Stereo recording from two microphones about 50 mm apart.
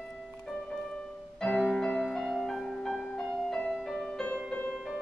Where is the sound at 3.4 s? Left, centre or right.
Centre.